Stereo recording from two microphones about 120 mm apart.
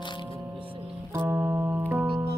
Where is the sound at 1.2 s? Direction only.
20° right (ahead or behind).